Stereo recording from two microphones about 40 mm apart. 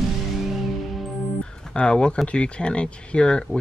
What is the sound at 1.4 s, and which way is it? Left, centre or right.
Speech, left.